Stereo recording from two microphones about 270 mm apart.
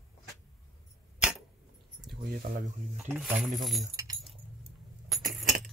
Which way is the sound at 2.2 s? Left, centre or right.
Right.